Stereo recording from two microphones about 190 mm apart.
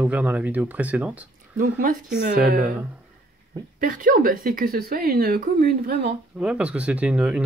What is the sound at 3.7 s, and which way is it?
Speech, 45° right (ahead or behind).